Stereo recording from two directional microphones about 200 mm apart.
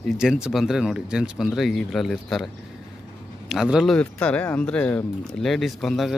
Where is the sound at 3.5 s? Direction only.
Centre (ahead or behind).